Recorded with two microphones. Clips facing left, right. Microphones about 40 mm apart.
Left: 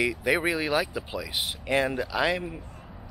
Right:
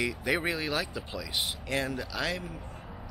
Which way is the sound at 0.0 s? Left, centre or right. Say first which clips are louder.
Left 4 dB; centre.